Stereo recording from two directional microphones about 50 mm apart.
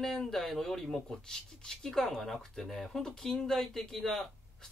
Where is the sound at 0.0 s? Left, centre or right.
Centre.